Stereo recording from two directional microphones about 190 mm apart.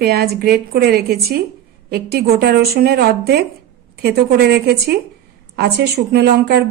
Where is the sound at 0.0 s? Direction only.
55° right (ahead or behind).